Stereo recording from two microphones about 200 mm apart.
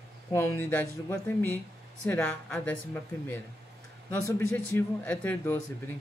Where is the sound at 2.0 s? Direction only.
10° left (ahead or behind).